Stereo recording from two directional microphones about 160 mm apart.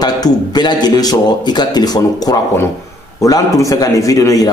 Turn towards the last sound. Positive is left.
turn(degrees=20)  # may be behind; listen again after turning